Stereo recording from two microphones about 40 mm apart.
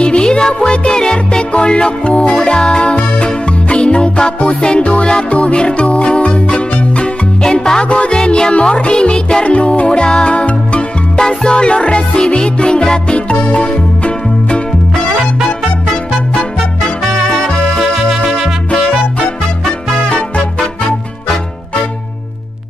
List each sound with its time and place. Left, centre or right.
0.0 s music: left
11.1 s music: centre
13.3 s music: left
15.4 s music: centre